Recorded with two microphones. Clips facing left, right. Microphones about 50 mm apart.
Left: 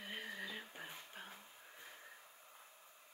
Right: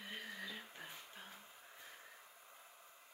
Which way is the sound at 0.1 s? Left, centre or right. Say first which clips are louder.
Left 2 dB; centre.